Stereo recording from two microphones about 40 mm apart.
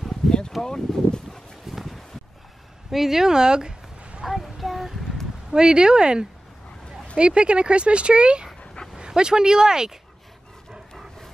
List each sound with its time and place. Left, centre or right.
0.2 s a sound: centre
0.6 s speech: centre
1.7 s a sound: centre
2.9 s speech: centre; by 4.2 s right
4.3 s child singing: centre
5.5 s speech: centre